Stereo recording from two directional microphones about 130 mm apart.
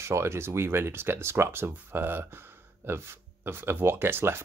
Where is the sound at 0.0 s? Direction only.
20° right (ahead or behind).